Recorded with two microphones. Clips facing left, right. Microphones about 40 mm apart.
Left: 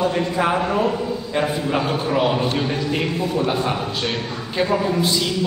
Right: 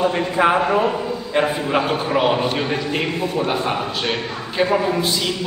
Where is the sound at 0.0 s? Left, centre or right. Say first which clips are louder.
Right 2 dB; centre.